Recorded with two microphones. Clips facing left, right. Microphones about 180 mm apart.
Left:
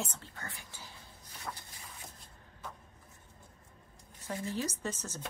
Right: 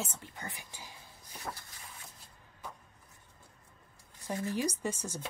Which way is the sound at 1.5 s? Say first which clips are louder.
Right 1 dB; 25° right (ahead or behind).